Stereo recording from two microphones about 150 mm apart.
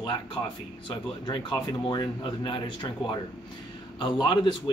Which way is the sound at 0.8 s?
30° left (ahead or behind).